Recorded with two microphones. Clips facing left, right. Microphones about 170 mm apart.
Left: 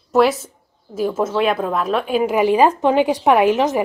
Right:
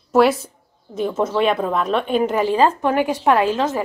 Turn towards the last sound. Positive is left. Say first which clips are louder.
# left 3 dB
turn(degrees=15)  # may be behind; listen again after turning